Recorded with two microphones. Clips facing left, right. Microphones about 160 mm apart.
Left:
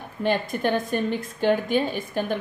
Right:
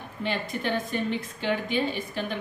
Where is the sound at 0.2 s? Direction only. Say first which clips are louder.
Left 6 dB; 50° left (ahead or behind).